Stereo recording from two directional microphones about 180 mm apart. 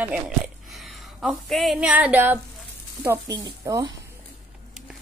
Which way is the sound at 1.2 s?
Centre (ahead or behind).